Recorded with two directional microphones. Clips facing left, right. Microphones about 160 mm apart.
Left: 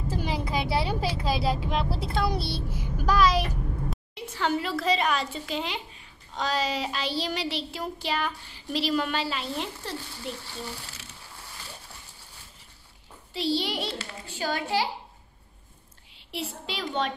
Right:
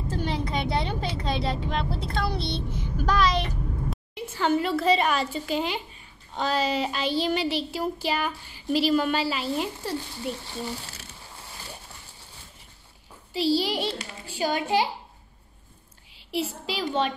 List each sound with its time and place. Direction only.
0.1 s child singing: 5° left (ahead or behind)
3.9 s a woman's voice: centre (ahead or behind)
6.3 s child singing: centre (ahead or behind)
10.4 s speech: 20° right (ahead or behind)
13.3 s child singing: 5° right (ahead or behind)
13.9 s a woman's voice: 15° right (ahead or behind)
16.3 s child singing: 5° right (ahead or behind)